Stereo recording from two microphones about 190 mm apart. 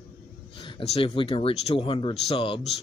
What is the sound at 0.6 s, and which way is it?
Speech, 25° left (ahead or behind).